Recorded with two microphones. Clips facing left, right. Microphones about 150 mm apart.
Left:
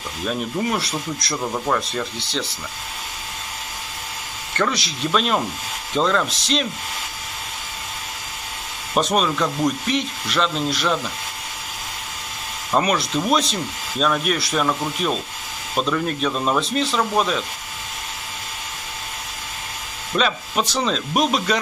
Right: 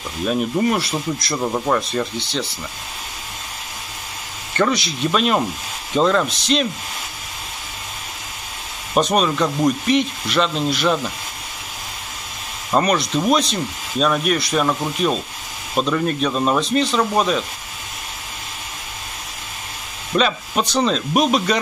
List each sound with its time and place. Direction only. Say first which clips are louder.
0.3 s speech: right 5 dB; centre (ahead or behind)
4.6 s speech: right 4 dB; centre (ahead or behind)
8.9 s speech: right 2 dB; centre (ahead or behind)
12.7 s speech: right 2 dB; 5° left (ahead or behind)
20.2 s speech: right 2 dB; centre (ahead or behind)